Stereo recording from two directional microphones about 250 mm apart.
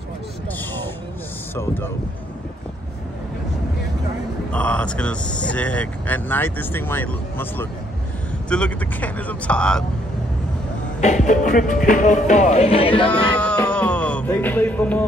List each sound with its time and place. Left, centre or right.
1.5 s speech: centre
4.5 s speech: centre
11.0 s speech: left
11.8 s music: left
13.4 s music: centre